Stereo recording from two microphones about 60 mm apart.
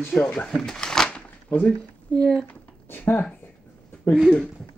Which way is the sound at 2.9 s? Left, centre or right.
Left.